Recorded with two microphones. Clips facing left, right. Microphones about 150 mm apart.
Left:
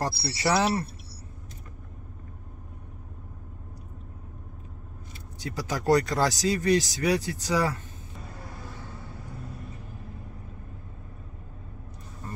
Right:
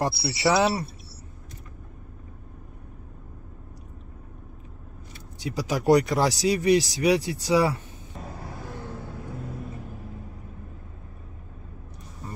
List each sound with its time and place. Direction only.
0.0 s speech: 15° right (ahead or behind)
5.4 s speech: 15° right (ahead or behind)